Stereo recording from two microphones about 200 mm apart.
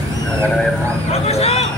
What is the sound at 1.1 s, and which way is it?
Vehicle, 30° left (ahead or behind).